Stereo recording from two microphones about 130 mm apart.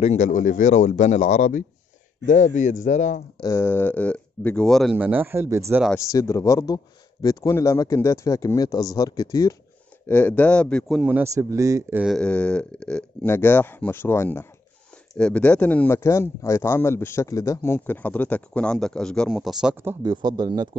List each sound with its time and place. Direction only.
0.0 s speech: 65° left (ahead or behind)
3.3 s speech: 25° left (ahead or behind); by 4.9 s 5° left (ahead or behind)
4.9 s speech: 15° right (ahead or behind)
5.9 s speech: 20° left (ahead or behind)
10.0 s speech: 10° left (ahead or behind)
11.0 s a man's voice: 15° right (ahead or behind)
12.2 s speech: 10° left (ahead or behind)
20.0 s speech: 35° right (ahead or behind)